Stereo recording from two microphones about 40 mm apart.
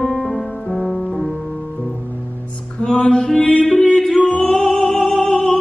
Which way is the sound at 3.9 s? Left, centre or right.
Centre.